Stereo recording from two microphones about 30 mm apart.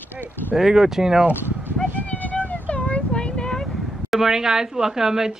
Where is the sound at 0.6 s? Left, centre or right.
Centre.